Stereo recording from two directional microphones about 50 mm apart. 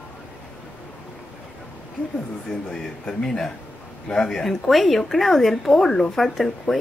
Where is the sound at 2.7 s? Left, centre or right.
Centre.